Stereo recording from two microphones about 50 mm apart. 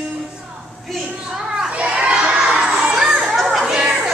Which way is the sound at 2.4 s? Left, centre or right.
Right.